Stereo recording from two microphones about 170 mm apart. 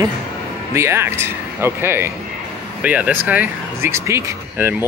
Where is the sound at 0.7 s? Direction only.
15° right (ahead or behind).